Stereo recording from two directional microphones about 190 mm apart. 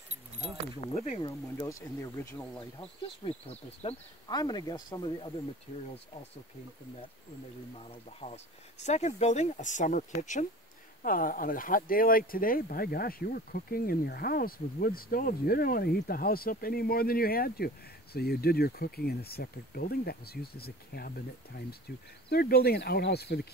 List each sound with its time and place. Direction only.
0.7 s speech: 35° left (ahead or behind)
1.2 s speech: 15° left (ahead or behind)
2.8 s speech: 35° left (ahead or behind)
4.3 s speech: 20° left (ahead or behind)
7.9 s speech: 30° left (ahead or behind); by 23.4 s 60° left (ahead or behind)